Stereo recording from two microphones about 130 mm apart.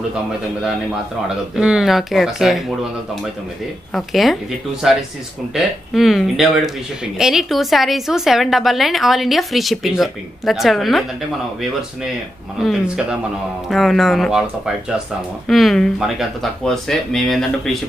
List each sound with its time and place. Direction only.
1.5 s a woman's voice: 5° right (ahead or behind)
3.9 s a woman's voice: centre (ahead or behind)
12.5 s a woman's voice: centre (ahead or behind)
15.4 s a woman's voice: centre (ahead or behind)